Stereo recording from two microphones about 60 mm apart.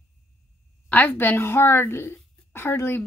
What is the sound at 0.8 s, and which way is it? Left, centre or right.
A woman's voice, left.